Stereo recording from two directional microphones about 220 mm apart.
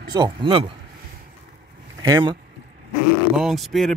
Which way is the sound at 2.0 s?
20° right (ahead or behind).